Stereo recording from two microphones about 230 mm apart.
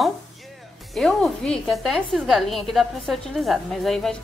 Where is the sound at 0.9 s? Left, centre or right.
Centre.